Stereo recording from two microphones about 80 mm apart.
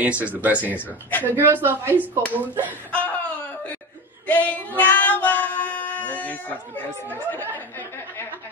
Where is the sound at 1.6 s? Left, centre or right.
Right.